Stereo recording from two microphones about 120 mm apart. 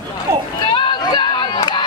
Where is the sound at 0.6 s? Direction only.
40° left (ahead or behind).